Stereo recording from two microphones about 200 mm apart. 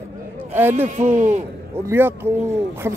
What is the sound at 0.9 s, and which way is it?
Speech, 40° right (ahead or behind).